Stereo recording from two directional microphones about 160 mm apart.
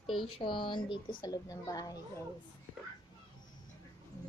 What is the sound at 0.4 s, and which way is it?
A woman's voice, 30° left (ahead or behind).